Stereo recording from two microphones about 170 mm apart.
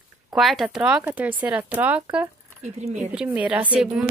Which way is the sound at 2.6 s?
40° right (ahead or behind).